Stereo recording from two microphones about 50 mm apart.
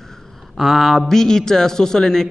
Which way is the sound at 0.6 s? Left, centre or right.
Centre.